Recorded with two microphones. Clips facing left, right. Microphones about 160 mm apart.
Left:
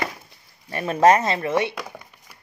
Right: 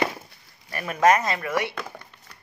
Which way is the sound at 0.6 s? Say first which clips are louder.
Left 3 dB; 25° left (ahead or behind).